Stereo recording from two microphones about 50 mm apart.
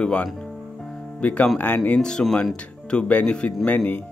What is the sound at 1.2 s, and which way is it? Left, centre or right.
Speech, left.